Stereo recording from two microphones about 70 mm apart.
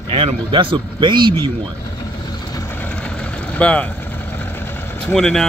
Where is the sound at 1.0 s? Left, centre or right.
Right.